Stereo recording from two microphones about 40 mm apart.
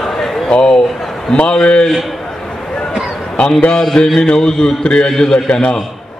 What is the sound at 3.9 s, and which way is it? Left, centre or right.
A man's voice, centre.